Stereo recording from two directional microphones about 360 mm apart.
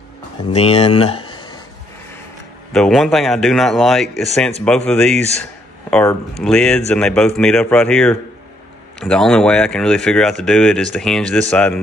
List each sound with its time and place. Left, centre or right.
0.5 s speech: centre
2.7 s speech: centre
5.4 s a sound: centre
6.4 s speech: centre